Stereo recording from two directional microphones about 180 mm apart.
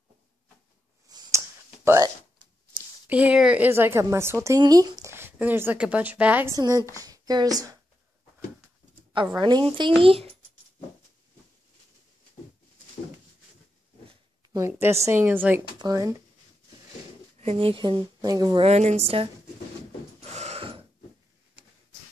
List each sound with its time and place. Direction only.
1.0 s clicking: 20° right (ahead or behind)
1.9 s speech: 20° right (ahead or behind)
3.1 s speech: 10° right (ahead or behind)
9.4 s a woman's voice: 25° right (ahead or behind)
14.7 s speech: 15° right (ahead or behind)
17.4 s speech: 35° right (ahead or behind)
18.7 s a woman's voice: 40° right (ahead or behind)
20.2 s mechanisms: 40° right (ahead or behind)